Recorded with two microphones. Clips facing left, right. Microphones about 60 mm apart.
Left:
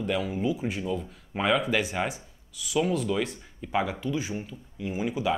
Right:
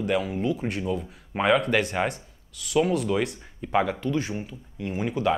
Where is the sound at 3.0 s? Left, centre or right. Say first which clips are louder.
Right 3 dB; centre.